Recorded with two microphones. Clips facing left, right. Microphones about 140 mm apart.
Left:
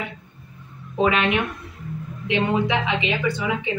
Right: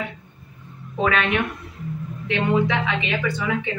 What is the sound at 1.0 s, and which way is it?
A woman's voice, 15° left (ahead or behind).